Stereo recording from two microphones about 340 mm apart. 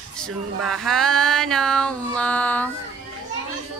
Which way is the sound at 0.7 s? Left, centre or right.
Centre.